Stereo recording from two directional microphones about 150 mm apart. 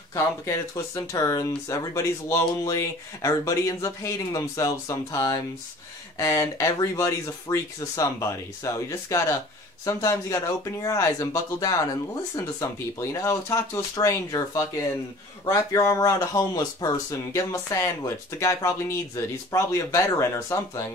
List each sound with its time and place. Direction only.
0.1 s speech: 20° left (ahead or behind)